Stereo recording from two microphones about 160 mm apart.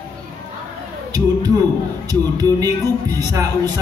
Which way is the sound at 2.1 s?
25° right (ahead or behind).